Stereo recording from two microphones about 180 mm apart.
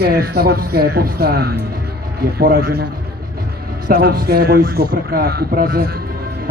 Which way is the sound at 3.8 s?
55° right (ahead or behind).